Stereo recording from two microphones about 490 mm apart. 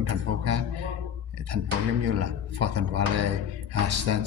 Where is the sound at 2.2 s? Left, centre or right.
Right.